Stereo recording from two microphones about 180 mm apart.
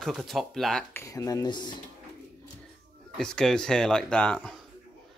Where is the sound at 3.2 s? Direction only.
5° left (ahead or behind).